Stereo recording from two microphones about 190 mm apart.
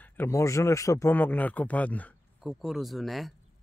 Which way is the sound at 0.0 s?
10° left (ahead or behind).